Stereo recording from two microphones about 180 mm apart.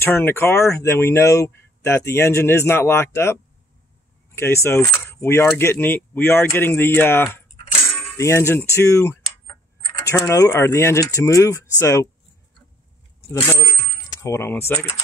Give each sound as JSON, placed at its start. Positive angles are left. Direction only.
{"t": 0.0, "sound": "speech", "side_deg": 10}
{"t": 4.4, "sound": "speech", "side_deg": 15}
{"t": 13.3, "sound": "speech", "side_deg": 15}